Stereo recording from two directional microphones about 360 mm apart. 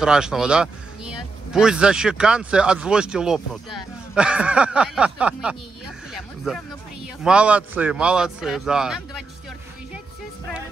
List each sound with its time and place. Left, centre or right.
0.0 s speech: centre